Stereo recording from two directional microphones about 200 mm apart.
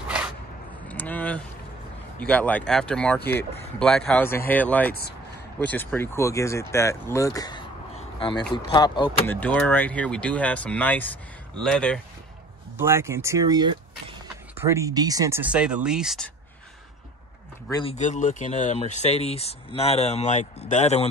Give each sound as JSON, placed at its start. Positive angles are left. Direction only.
{"t": 0.8, "sound": "a sound", "side_deg": 10}
{"t": 2.1, "sound": "speech", "side_deg": 10}
{"t": 7.9, "sound": "a sound", "side_deg": 25}
{"t": 8.7, "sound": "speech", "side_deg": 20}
{"t": 9.2, "sound": "speech", "side_deg": 10}
{"t": 12.7, "sound": "speech", "side_deg": -15}
{"t": 17.6, "sound": "speech", "side_deg": 20}
{"t": 17.9, "sound": "speech", "side_deg": 40}